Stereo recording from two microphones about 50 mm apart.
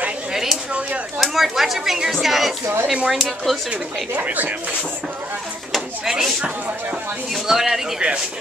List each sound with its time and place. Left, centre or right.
0.3 s a sound: centre
1.1 s speech: centre
2.6 s speech: right
3.1 s speech: centre
4.1 s speech: right
6.0 s speech: centre
7.4 s speech: centre